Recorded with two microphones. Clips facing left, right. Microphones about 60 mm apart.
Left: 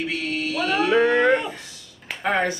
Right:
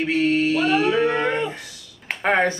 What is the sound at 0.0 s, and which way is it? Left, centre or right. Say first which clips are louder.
Speech: right 7 dB; right.